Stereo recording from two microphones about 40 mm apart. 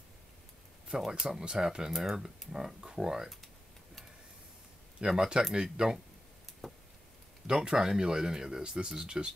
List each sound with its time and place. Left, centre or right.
0.8 s speech: centre
5.0 s speech: centre
7.4 s speech: centre